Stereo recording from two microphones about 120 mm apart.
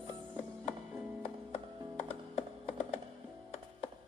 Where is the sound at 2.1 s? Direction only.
55° left (ahead or behind).